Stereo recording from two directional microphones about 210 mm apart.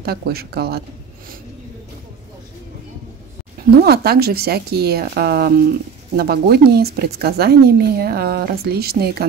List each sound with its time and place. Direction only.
0.0 s speech: 50° right (ahead or behind)
3.8 s speech: 50° right (ahead or behind)